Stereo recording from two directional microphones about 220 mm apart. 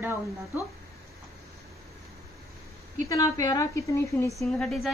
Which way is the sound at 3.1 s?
15° left (ahead or behind).